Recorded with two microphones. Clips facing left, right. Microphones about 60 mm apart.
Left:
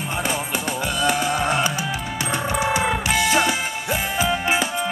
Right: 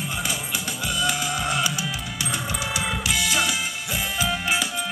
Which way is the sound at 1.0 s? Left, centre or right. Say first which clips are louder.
Left 6 dB; left.